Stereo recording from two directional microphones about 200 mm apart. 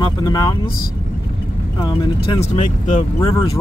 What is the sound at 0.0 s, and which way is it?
Speech, 20° left (ahead or behind).